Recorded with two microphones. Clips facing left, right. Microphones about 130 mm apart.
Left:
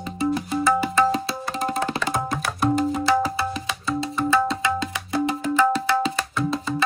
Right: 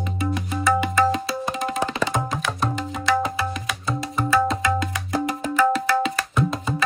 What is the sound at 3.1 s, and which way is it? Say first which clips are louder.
Music: left 1 dB; 30° left (ahead or behind).